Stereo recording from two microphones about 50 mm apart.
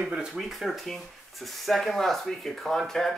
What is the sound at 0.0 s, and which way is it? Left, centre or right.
Speech, centre.